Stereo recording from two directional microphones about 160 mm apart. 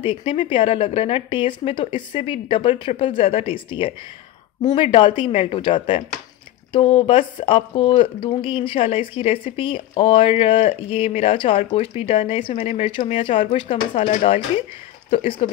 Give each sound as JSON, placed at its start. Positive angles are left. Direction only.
{"t": 0.0, "sound": "speech", "side_deg": 35}